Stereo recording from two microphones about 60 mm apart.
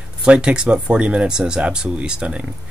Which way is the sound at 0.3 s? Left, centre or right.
Centre.